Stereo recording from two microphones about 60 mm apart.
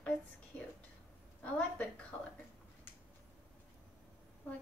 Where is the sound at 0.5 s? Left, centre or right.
Left.